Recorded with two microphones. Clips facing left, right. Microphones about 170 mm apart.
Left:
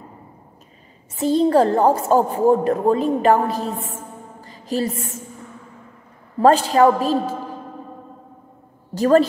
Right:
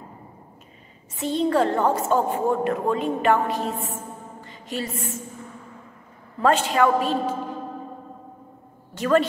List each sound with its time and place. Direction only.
1.1 s a woman's voice: 35° left (ahead or behind)
4.4 s music: 35° left (ahead or behind)
6.4 s a woman's voice: 35° left (ahead or behind)
8.9 s a woman's voice: 35° left (ahead or behind)